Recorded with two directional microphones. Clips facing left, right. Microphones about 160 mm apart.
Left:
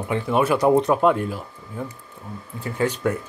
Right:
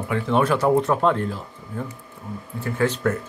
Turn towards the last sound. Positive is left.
turn(degrees=15)  # may be behind; listen again after turning